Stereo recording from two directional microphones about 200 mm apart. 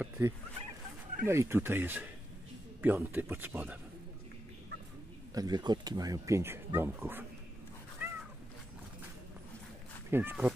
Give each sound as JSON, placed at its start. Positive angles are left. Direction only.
{"t": 1.2, "sound": "speech", "side_deg": -15}
{"t": 5.3, "sound": "speech", "side_deg": -20}
{"t": 8.0, "sound": "cat", "side_deg": -5}
{"t": 10.1, "sound": "speech", "side_deg": -10}